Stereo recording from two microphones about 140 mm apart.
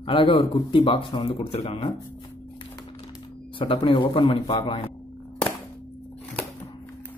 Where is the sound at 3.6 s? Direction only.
40° left (ahead or behind).